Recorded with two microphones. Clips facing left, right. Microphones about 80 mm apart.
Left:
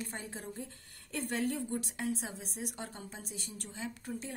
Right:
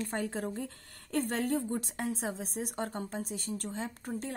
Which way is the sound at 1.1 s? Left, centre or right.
Right.